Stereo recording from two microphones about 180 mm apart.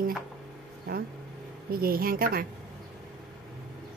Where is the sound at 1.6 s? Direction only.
55° right (ahead or behind).